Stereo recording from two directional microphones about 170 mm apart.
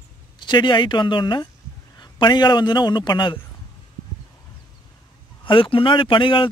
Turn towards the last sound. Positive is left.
turn(degrees=30)  # may be behind; listen again after turning